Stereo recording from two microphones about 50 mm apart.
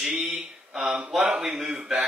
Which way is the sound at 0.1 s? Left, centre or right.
Right.